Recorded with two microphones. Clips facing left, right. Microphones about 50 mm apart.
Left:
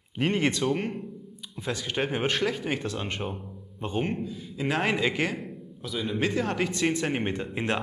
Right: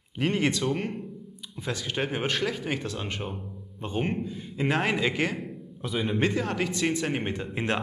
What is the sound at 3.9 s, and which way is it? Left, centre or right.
Speech, centre.